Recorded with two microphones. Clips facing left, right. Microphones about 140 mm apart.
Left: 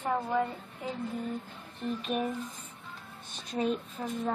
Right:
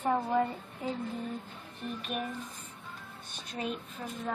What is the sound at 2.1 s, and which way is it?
Speech, 30° left (ahead or behind).